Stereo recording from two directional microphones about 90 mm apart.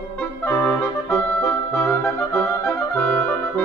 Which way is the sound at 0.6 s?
15° left (ahead or behind).